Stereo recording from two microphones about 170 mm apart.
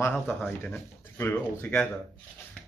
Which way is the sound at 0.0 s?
10° left (ahead or behind).